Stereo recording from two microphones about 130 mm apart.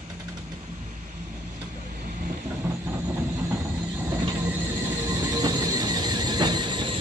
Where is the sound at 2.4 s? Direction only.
15° right (ahead or behind).